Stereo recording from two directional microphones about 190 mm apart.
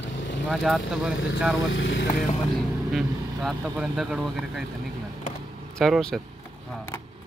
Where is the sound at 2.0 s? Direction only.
50° left (ahead or behind).